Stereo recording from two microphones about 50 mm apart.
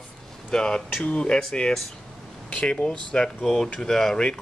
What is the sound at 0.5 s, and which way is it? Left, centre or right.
Speech, centre.